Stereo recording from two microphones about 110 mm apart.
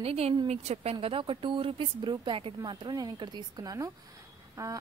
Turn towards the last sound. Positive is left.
turn(degrees=-25)  # may be behind; listen again after turning